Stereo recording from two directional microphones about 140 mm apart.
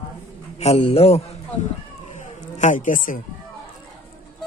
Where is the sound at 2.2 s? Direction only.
60° left (ahead or behind).